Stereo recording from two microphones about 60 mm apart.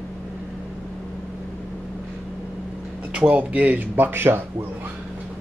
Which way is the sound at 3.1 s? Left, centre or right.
Right.